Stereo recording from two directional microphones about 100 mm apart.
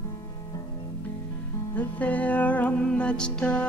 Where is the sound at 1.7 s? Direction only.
15° left (ahead or behind).